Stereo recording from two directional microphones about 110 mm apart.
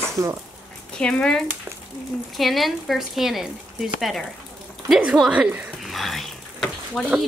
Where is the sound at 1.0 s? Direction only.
10° left (ahead or behind); by 5.6 s 10° right (ahead or behind).